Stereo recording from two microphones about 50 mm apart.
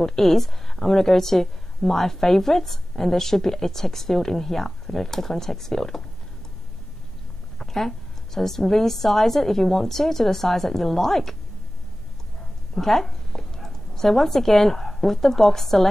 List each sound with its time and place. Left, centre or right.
0.0 s a woman's voice: centre
7.5 s a sound: centre
8.4 s a woman's voice: centre
12.7 s speech: centre